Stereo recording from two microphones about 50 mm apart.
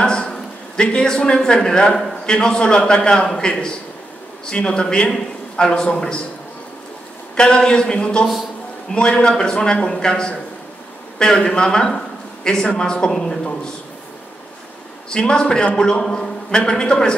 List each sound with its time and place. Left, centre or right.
0.0 s a man's voice: centre
7.3 s a man's voice: centre
15.0 s a man's voice: centre